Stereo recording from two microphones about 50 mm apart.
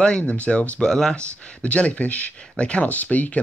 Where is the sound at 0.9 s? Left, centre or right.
Centre.